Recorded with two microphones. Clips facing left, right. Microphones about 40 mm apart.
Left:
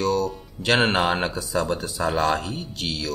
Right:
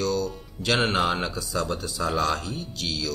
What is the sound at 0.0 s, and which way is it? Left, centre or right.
Music, left.